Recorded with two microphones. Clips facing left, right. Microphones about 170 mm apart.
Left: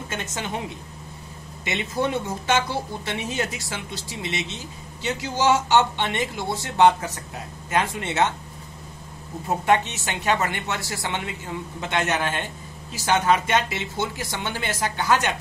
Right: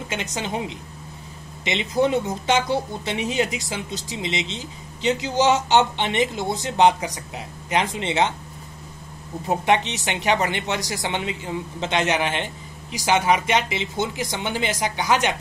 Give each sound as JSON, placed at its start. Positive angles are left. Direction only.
{"t": 0.1, "sound": "speech", "side_deg": -15}
{"t": 9.5, "sound": "speech", "side_deg": -20}